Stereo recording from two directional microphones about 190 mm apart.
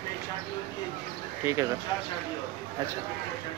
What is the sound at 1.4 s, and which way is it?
Speech, 15° right (ahead or behind).